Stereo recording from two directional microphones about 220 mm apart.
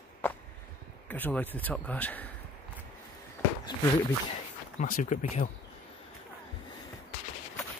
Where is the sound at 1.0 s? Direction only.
10° left (ahead or behind).